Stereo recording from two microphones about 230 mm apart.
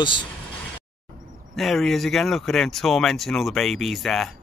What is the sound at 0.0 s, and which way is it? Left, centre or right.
Speech, left.